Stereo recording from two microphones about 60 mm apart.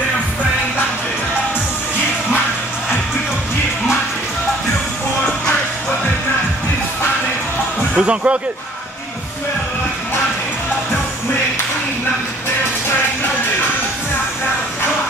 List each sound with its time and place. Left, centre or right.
7.9 s speech: centre